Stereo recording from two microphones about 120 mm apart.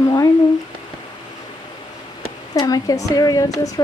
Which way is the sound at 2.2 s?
30° left (ahead or behind).